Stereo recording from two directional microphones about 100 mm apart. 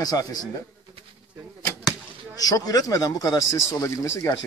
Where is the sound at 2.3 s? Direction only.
40° left (ahead or behind).